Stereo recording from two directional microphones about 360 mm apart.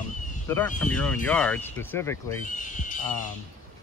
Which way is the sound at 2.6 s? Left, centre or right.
Left.